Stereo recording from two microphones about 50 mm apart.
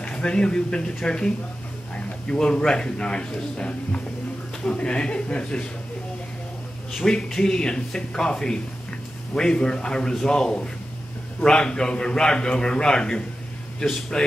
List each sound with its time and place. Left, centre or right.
0.0 s a man's voice: centre
7.1 s a man's voice: centre